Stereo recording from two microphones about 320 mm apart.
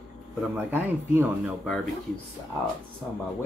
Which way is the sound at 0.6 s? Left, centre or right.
Centre.